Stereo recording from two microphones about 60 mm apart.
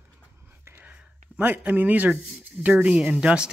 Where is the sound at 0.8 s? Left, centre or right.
Right.